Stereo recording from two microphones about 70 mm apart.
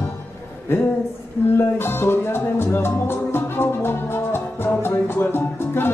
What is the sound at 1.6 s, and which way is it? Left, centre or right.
Music, left.